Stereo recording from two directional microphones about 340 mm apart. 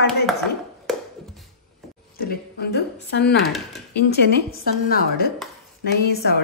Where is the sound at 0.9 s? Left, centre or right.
Centre.